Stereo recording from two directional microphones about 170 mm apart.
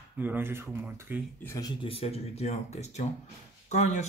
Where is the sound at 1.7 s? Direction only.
35° left (ahead or behind).